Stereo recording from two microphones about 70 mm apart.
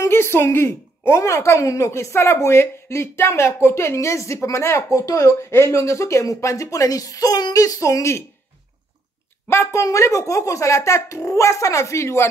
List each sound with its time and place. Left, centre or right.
0.0 s a woman's voice: left
9.5 s a woman's voice: left
9.8 s a woman's voice: left